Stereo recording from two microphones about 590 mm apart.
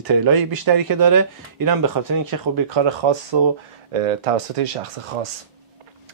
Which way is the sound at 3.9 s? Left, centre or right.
Right.